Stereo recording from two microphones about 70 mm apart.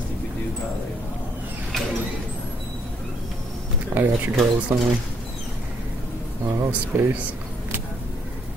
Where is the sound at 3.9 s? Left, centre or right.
Right.